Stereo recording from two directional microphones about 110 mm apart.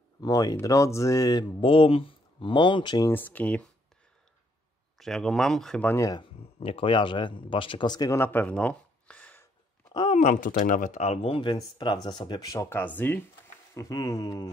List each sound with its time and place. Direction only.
0.2 s speech: 35° left (ahead or behind)
1.6 s speech: 55° left (ahead or behind)
3.1 s speech: 15° left (ahead or behind)
4.9 s speech: 5° left (ahead or behind)
5.9 s speech: 30° left (ahead or behind)
6.6 s speech: 55° left (ahead or behind); by 8.2 s 35° left (ahead or behind)
8.2 s a sound: 15° left (ahead or behind)
10.1 s speech: 90° left; by 11.5 s 55° left (ahead or behind)
11.5 s speech: 40° left (ahead or behind)
12.4 s speech: 25° left (ahead or behind)
13.7 s speech: 30° left (ahead or behind)